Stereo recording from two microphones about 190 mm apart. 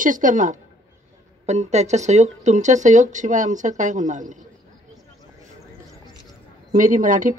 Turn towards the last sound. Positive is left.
turn(degrees=-45)  # may be behind; listen again after turning